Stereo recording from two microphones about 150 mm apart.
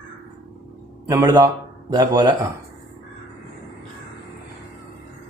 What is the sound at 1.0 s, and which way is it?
Speech, 20° right (ahead or behind).